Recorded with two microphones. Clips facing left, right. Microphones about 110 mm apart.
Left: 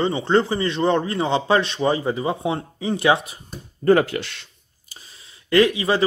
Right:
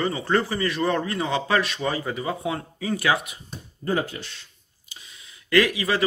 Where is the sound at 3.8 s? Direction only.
75° left (ahead or behind).